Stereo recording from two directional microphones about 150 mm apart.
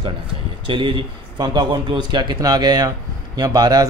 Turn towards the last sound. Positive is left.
turn(degrees=-25)  # may be behind; listen again after turning